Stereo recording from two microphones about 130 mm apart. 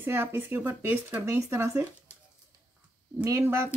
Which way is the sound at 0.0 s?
15° right (ahead or behind).